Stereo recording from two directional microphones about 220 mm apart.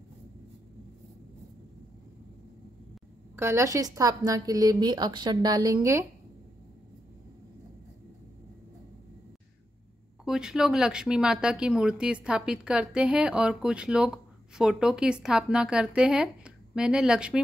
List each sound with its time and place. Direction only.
3.3 s a woman's voice: 10° right (ahead or behind)
10.2 s speech: 5° right (ahead or behind)